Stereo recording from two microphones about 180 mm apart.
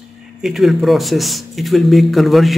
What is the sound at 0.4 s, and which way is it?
Speech, centre (ahead or behind).